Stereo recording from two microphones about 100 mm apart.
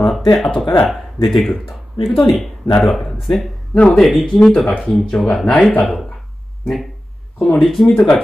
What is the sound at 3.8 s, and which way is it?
Speech, 15° left (ahead or behind).